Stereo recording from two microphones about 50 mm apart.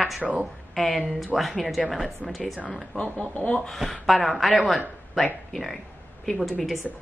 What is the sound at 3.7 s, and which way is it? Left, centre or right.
A woman's voice, centre.